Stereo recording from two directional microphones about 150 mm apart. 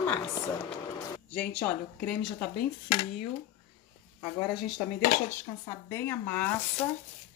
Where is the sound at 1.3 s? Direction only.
10° left (ahead or behind).